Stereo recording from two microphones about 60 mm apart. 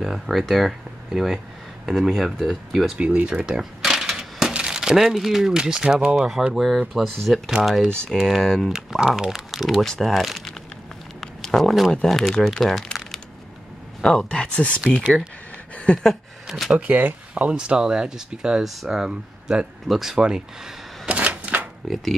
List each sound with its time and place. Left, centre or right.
0.0 s speech: centre
3.2 s speech: right
3.4 s speech: centre
8.7 s speech: centre
11.1 s a sound: centre
11.9 s speech: centre
12.8 s typing: centre
14.0 s speech: centre
15.9 s speech: centre
16.7 s speech: right
21.1 s a sound: right
21.8 s speech: centre